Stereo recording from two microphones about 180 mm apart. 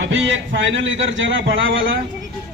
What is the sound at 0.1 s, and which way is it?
A man's voice, 90° right.